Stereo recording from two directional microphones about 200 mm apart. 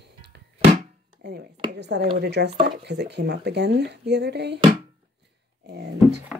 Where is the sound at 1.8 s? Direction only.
55° right (ahead or behind).